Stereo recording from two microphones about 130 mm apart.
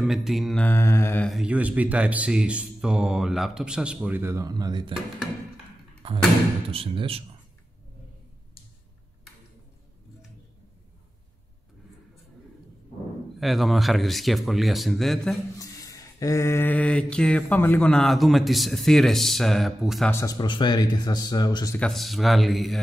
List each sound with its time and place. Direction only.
0.0 s a man's voice: centre (ahead or behind)
0.7 s mantra: 20° left (ahead or behind)
1.2 s speech: 5° right (ahead or behind); by 4.9 s 35° right (ahead or behind)
6.0 s a sound: 45° right (ahead or behind)
6.7 s speech: 45° right (ahead or behind)
13.4 s a man's voice: centre (ahead or behind)
15.6 s mantra: 25° left (ahead or behind); by 20.1 s centre (ahead or behind)
20.1 s mantra: 20° left (ahead or behind)
20.3 s speech: 35° left (ahead or behind)
21.7 s a man's voice: 5° left (ahead or behind)